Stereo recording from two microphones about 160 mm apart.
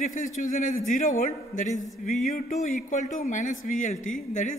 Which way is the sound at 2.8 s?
50° left (ahead or behind).